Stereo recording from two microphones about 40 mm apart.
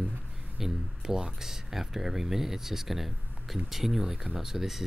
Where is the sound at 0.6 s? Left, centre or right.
Centre.